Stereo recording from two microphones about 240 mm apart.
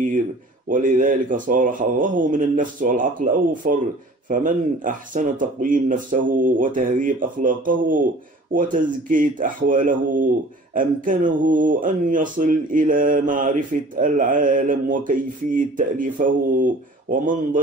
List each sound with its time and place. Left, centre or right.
0.7 s speech: right